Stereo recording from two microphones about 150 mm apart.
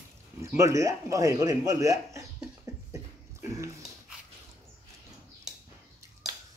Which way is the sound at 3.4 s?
20° right (ahead or behind).